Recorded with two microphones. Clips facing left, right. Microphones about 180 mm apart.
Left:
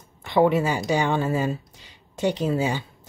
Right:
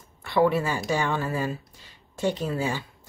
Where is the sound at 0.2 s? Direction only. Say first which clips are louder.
Left 3 dB; 20° left (ahead or behind).